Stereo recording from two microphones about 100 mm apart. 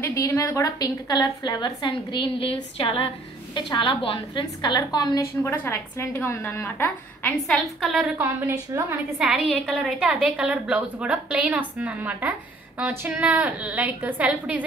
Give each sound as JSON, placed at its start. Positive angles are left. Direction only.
{"t": 0.0, "sound": "a woman's voice", "side_deg": 30}
{"t": 3.5, "sound": "a woman's voice", "side_deg": 55}
{"t": 5.4, "sound": "a woman's voice", "side_deg": 30}
{"t": 8.2, "sound": "a woman's voice", "side_deg": -30}
{"t": 9.2, "sound": "a woman's voice", "side_deg": -5}